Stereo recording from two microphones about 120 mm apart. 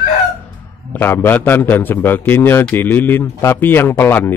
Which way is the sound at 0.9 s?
20° left (ahead or behind).